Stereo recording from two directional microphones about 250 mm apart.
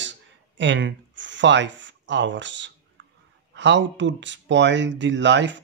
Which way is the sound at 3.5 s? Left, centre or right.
Right.